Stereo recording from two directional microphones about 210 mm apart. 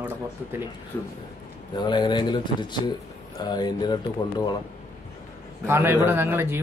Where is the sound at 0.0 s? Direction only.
10° right (ahead or behind).